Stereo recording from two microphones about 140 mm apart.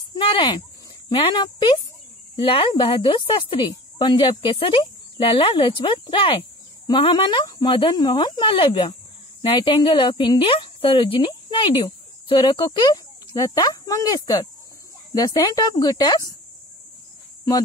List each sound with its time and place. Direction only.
0.1 s a woman's voice: 35° left (ahead or behind)